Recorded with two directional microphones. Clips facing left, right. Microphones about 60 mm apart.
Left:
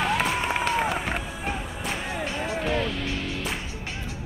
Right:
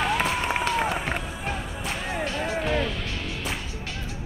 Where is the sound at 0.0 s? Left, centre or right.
Centre.